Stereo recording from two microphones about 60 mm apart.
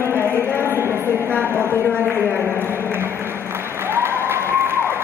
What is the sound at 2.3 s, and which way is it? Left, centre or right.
Applause, right.